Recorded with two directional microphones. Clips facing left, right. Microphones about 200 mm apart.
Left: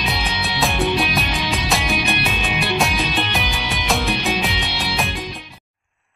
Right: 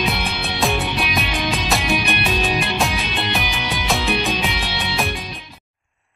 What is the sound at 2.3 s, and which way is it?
Music, 35° right (ahead or behind).